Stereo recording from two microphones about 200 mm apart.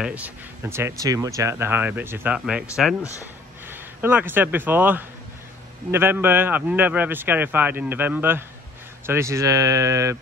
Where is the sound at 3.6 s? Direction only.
10° right (ahead or behind).